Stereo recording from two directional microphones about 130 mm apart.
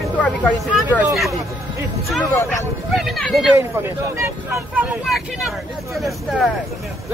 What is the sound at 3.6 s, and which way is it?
Speech, 20° right (ahead or behind).